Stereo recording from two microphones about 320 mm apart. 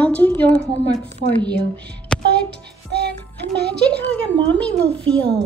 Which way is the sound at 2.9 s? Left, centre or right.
Right.